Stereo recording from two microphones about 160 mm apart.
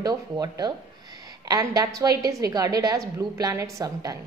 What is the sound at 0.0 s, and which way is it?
Speech, 25° right (ahead or behind).